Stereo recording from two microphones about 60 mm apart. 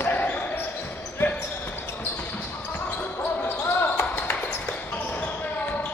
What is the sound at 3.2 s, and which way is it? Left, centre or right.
Basketball bounce, left.